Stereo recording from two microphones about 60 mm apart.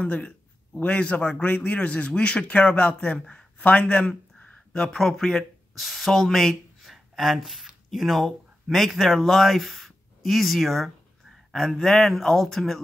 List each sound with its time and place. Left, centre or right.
0.0 s a man's voice: centre